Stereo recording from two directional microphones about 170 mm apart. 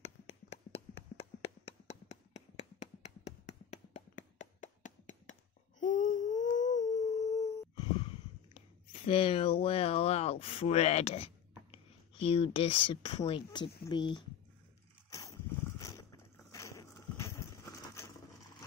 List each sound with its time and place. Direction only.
0.0 s tap: 35° left (ahead or behind)
5.8 s humming: 50° left (ahead or behind)
8.5 s speech: 35° left (ahead or behind)
15.0 s dog: 20° left (ahead or behind)
16.5 s a sound: 20° left (ahead or behind)